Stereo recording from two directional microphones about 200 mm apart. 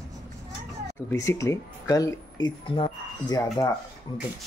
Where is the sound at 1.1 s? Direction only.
15° left (ahead or behind).